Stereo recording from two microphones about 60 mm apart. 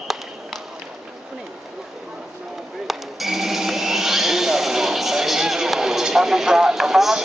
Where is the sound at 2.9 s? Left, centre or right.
Centre.